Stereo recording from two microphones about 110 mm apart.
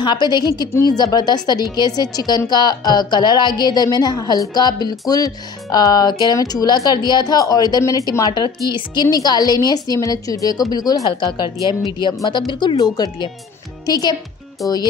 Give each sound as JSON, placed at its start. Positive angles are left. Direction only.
{"t": 0.0, "sound": "a woman's voice", "side_deg": 40}
{"t": 11.5, "sound": "speech", "side_deg": -30}
{"t": 12.3, "sound": "a woman's voice", "side_deg": 45}